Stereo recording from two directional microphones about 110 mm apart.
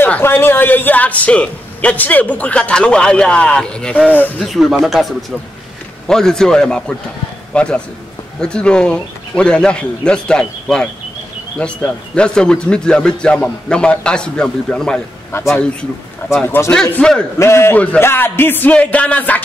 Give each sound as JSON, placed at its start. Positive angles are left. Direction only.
{"t": 0.0, "sound": "a man's voice", "side_deg": 20}
{"t": 4.5, "sound": "a man's voice", "side_deg": 0}
{"t": 6.0, "sound": "a man's voice", "side_deg": 5}
{"t": 15.3, "sound": "a man's voice", "side_deg": 25}
{"t": 16.7, "sound": "a man's voice", "side_deg": 10}
{"t": 17.4, "sound": "a man's voice", "side_deg": 25}